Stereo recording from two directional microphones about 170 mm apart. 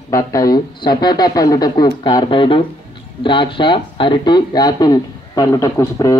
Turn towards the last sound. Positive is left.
turn(degrees=20)  # may be behind; listen again after turning